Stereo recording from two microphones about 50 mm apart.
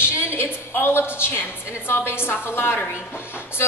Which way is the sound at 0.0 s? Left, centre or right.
Left.